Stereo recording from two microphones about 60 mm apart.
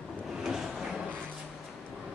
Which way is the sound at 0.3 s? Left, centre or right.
Centre.